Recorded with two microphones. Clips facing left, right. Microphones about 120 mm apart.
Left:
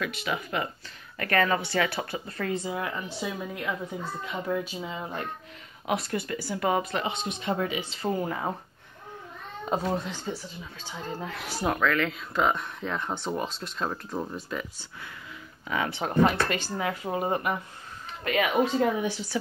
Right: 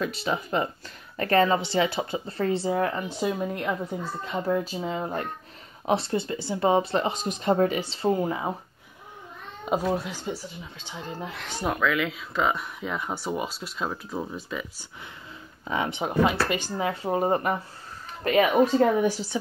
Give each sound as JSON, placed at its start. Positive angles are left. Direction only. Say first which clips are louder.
{"t": 0.0, "sound": "speech", "louder": "right 3 dB", "side_deg": -30}
{"t": 4.3, "sound": "speech", "louder": "right 4 dB", "side_deg": -30}
{"t": 5.9, "sound": "speech", "louder": "right 4 dB", "side_deg": -25}
{"t": 8.1, "sound": "speech", "louder": "right 3 dB", "side_deg": -15}
{"t": 9.7, "sound": "speech", "louder": "right 3 dB", "side_deg": -10}
{"t": 11.3, "sound": "speech", "louder": "even", "side_deg": 5}
{"t": 15.6, "sound": "speech", "louder": "right 2 dB", "side_deg": -25}
{"t": 16.0, "sound": "speech", "louder": "left 1 dB", "side_deg": -10}
{"t": 16.7, "sound": "speech", "louder": "right 3 dB", "side_deg": -25}
{"t": 18.9, "sound": "speech", "louder": "right 6 dB", "side_deg": -40}